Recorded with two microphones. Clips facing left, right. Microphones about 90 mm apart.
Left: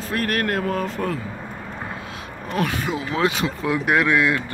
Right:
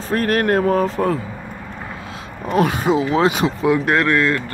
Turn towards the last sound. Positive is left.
turn(degrees=10)  # may be behind; listen again after turning